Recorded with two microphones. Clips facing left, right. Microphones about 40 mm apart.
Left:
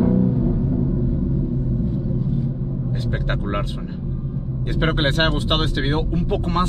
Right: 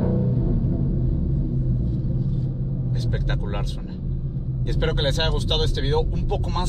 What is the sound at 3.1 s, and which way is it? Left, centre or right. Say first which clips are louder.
Vehicle: left 4 dB; left.